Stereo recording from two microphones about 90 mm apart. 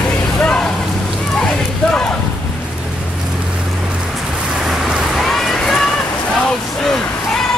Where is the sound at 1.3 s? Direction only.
10° left (ahead or behind).